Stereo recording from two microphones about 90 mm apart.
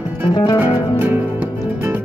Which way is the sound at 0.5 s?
25° right (ahead or behind).